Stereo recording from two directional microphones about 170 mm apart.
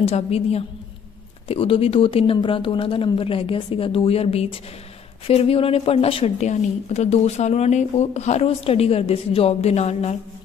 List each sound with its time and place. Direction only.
0.0 s speech: 35° left (ahead or behind)